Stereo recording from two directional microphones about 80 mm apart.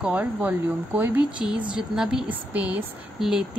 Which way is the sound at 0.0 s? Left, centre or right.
Centre.